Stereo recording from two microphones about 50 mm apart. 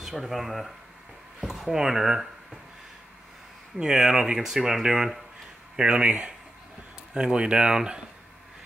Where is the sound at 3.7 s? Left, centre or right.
Centre.